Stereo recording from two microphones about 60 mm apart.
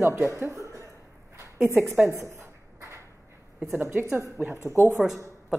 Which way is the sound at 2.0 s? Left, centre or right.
Right.